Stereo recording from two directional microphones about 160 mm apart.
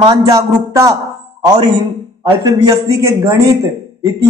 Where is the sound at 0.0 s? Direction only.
25° right (ahead or behind).